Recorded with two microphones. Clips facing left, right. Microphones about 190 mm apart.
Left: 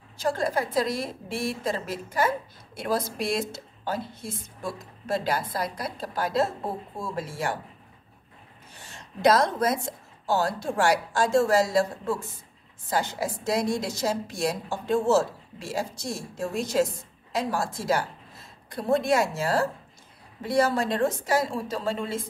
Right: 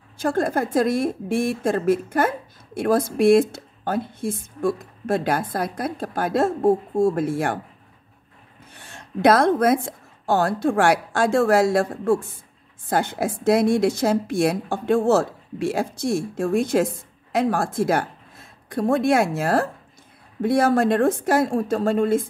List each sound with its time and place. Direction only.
0.2 s a woman's voice: 50° right (ahead or behind)
8.7 s a woman's voice: 55° right (ahead or behind)